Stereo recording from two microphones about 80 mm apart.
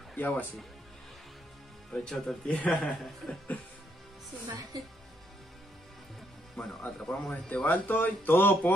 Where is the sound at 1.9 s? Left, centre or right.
Centre.